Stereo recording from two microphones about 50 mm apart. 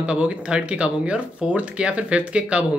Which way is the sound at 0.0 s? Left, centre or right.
Right.